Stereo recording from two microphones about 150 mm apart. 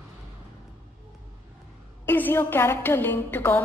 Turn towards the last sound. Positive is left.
turn(degrees=15)  # may be behind; listen again after turning